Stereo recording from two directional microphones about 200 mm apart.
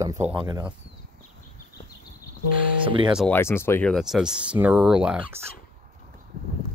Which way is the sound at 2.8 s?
25° right (ahead or behind).